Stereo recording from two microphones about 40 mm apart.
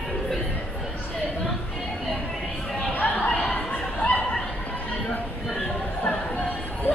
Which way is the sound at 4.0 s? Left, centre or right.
Left.